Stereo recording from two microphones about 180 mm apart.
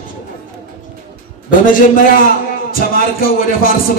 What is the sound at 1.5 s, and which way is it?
A man's voice, 50° left (ahead or behind).